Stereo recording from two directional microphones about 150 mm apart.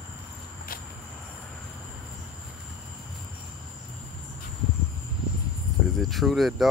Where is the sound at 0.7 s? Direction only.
70° left (ahead or behind).